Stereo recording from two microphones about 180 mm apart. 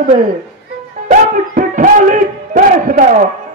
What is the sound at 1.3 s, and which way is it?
Speech, 50° right (ahead or behind).